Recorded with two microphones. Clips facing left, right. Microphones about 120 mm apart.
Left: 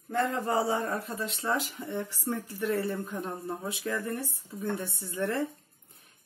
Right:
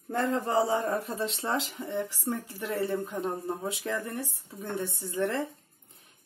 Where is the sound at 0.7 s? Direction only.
25° right (ahead or behind).